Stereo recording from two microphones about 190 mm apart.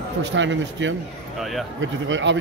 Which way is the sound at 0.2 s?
75° right (ahead or behind).